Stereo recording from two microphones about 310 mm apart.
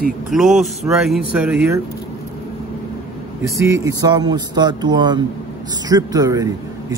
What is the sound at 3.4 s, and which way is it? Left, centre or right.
A man's voice, centre.